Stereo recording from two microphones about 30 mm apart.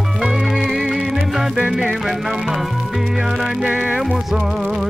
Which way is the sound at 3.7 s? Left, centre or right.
Right.